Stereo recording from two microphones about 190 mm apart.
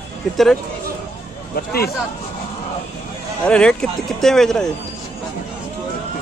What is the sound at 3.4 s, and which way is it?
Speech, 5° left (ahead or behind).